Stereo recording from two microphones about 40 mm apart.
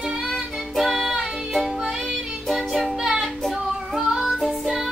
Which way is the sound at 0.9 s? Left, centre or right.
Centre.